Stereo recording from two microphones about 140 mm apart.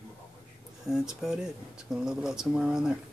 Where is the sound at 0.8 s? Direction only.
5° right (ahead or behind).